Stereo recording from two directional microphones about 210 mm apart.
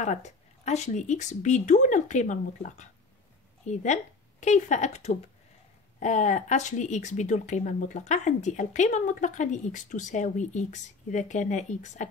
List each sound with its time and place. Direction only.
0.0 s speech: 35° left (ahead or behind)